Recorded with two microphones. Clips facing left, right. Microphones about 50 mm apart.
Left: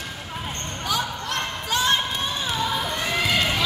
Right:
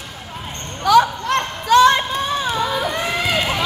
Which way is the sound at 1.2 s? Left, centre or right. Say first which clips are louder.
Right 8 dB; right.